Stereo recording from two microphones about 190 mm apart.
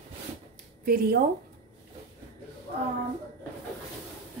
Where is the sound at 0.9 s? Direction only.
50° right (ahead or behind).